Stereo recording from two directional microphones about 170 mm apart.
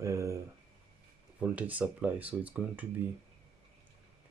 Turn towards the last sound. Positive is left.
turn(degrees=-10)  # may be behind; listen again after turning